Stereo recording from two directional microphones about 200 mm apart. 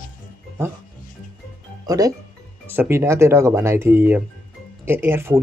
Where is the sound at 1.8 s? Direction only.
20° right (ahead or behind).